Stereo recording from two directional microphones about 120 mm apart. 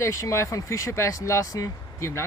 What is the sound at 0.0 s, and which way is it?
Speech, 25° left (ahead or behind).